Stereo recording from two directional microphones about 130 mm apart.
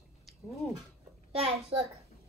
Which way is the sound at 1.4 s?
50° right (ahead or behind).